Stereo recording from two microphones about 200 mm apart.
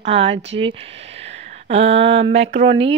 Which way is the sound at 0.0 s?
30° right (ahead or behind).